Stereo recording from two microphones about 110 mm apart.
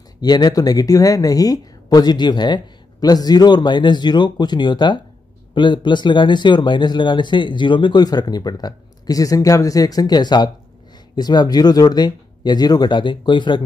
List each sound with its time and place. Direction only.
0.2 s speech: 40° left (ahead or behind)